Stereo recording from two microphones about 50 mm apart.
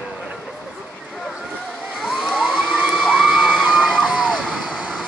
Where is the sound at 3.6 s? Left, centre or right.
Centre.